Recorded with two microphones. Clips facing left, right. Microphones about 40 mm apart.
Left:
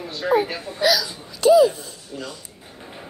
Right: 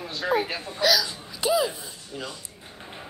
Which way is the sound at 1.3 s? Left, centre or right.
Centre.